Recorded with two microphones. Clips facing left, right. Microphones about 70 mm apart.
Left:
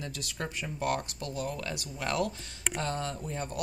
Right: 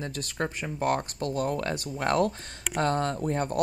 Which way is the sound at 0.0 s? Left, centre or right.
Right.